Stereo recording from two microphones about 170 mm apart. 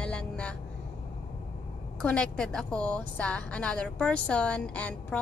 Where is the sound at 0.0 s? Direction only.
5° left (ahead or behind).